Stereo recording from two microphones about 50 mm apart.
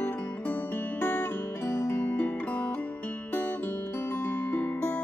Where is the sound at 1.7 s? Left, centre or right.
Left.